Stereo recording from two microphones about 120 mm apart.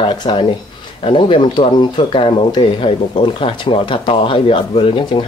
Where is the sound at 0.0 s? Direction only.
45° left (ahead or behind).